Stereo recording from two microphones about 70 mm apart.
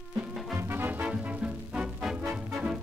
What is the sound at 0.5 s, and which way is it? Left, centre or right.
Music, right.